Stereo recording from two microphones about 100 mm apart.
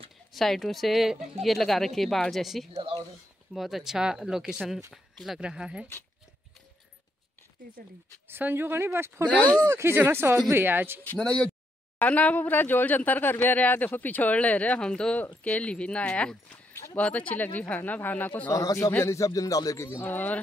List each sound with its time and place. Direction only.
0.3 s speech: centre (ahead or behind)
2.7 s speech: 65° right (ahead or behind)
3.5 s speech: 5° right (ahead or behind)
8.3 s speech: 20° right (ahead or behind)
9.3 s speech: 15° left (ahead or behind)
9.7 s speech: 25° right (ahead or behind)
11.1 s speech: 10° left (ahead or behind)
18.5 s a man's voice: 35° left (ahead or behind); by 20.3 s 20° left (ahead or behind)